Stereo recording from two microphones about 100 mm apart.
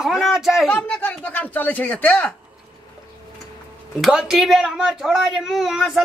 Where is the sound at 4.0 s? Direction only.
5° right (ahead or behind).